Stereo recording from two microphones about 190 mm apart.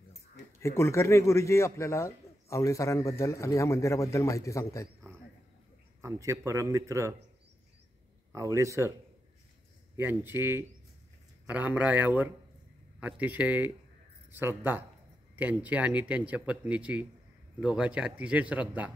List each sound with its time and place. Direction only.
0.6 s a man's voice: 15° left (ahead or behind)
5.1 s a sound: 15° right (ahead or behind)
5.9 s speech: 15° right (ahead or behind)
8.3 s speech: 15° right (ahead or behind)
9.9 s speech: 10° right (ahead or behind)